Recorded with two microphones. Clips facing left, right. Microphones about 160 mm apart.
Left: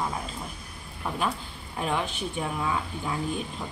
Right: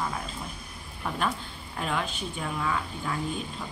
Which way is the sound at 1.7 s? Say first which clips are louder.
Left 2 dB; 10° left (ahead or behind).